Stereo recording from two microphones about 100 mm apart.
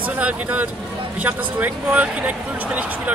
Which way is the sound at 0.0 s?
15° right (ahead or behind).